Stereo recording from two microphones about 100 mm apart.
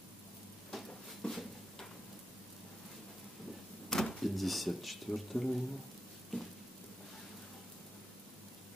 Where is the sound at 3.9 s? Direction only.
5° left (ahead or behind).